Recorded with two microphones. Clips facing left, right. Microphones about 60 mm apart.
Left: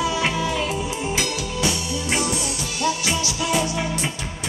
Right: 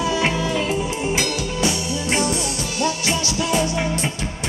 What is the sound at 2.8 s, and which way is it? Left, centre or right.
Music, right.